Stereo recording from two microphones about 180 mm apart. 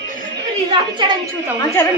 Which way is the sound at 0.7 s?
25° right (ahead or behind).